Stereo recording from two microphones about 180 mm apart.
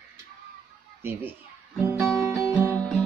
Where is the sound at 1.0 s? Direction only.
10° right (ahead or behind).